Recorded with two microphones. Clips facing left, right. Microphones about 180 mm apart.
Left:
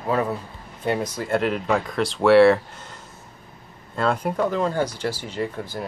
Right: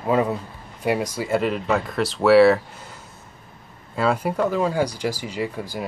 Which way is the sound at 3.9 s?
5° right (ahead or behind).